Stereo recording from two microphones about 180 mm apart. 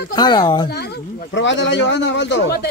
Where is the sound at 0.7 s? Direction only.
65° left (ahead or behind).